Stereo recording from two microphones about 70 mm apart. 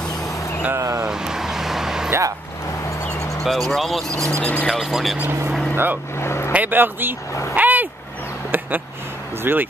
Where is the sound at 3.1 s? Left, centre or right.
Left.